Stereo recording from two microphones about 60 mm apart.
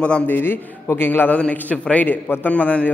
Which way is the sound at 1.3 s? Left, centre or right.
Left.